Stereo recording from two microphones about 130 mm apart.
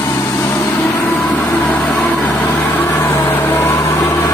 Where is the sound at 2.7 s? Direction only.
15° left (ahead or behind).